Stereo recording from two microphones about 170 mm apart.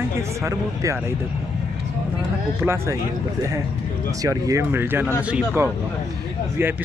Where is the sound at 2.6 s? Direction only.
15° right (ahead or behind).